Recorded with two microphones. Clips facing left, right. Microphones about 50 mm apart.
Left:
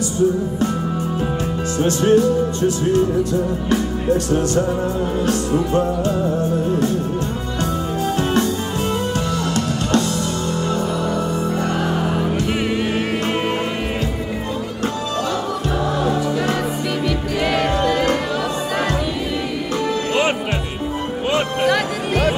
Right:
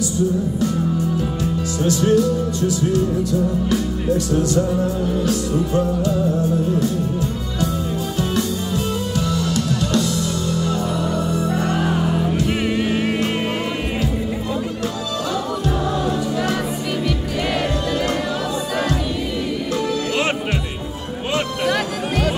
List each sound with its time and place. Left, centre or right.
1.8 s music: left
9.1 s music: left
12.5 s music: centre
17.6 s music: left